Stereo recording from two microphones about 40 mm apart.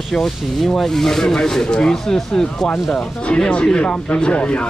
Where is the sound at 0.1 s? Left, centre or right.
Centre.